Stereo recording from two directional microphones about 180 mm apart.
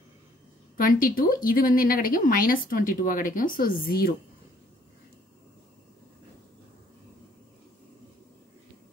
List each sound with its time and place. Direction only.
0.7 s speech: 50° left (ahead or behind)